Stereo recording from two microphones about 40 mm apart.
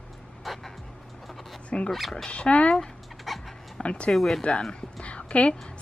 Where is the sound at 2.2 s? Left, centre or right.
Left.